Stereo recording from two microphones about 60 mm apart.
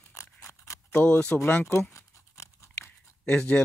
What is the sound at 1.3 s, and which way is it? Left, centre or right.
Speech, centre.